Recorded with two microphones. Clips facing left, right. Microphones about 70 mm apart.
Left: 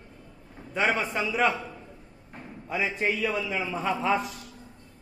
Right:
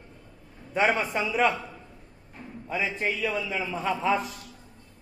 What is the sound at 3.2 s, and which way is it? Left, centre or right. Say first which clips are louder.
Speech: left 1 dB; centre.